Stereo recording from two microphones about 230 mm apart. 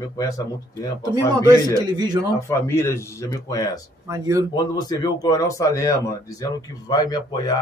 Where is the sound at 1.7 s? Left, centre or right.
Centre.